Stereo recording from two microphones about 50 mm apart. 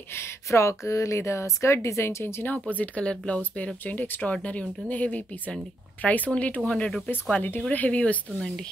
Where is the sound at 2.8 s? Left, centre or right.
Left.